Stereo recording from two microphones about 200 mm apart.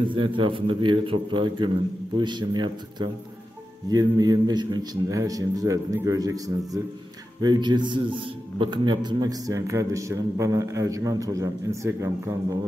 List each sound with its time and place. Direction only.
0.1 s a man's voice: 25° right (ahead or behind)